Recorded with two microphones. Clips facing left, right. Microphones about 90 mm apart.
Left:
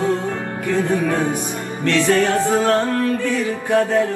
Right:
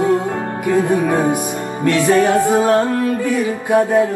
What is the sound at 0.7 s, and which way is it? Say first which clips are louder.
Music: right 4 dB; 15° right (ahead or behind).